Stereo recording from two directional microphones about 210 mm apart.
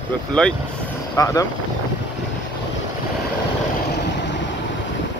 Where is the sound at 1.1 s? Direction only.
15° left (ahead or behind).